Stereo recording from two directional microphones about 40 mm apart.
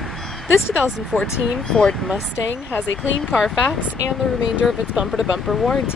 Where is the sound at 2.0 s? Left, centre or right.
Centre.